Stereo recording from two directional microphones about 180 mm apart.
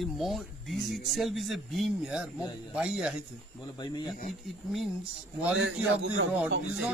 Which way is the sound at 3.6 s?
25° left (ahead or behind).